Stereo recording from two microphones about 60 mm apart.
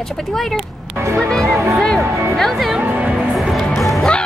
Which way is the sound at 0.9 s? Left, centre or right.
Right.